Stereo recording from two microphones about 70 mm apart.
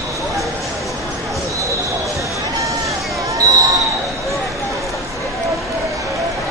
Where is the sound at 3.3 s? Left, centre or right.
Right.